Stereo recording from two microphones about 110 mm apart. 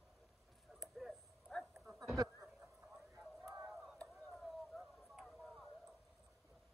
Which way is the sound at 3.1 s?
30° right (ahead or behind).